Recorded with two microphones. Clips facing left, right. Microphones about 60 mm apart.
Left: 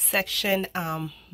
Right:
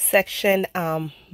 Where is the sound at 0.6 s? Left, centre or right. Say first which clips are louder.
Right 5 dB; right.